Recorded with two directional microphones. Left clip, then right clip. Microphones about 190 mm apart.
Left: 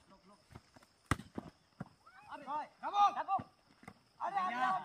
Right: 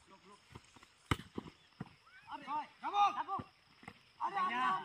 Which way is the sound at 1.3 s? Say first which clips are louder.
Even; 10° left (ahead or behind).